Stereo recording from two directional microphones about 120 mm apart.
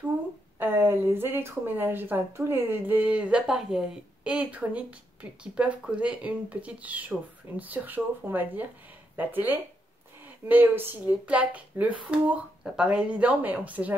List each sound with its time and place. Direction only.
0.6 s speech: 20° right (ahead or behind)